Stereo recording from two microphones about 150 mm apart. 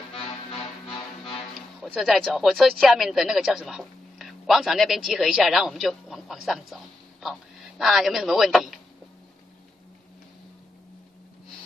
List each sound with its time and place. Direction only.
0.6 s music: 35° left (ahead or behind)
1.3 s speech: centre (ahead or behind)